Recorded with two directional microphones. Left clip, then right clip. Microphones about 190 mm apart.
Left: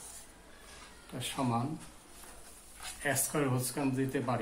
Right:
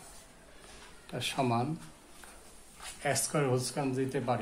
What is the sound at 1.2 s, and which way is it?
Speech, 60° right (ahead or behind).